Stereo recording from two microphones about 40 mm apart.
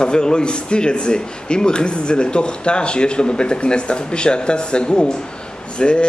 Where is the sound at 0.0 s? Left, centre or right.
Left.